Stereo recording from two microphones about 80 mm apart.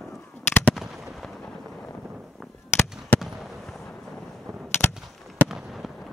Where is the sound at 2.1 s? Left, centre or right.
Centre.